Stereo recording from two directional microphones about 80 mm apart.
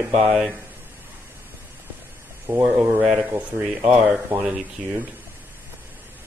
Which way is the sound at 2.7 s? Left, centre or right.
Right.